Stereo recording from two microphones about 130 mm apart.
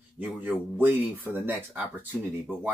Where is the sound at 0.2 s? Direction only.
15° right (ahead or behind).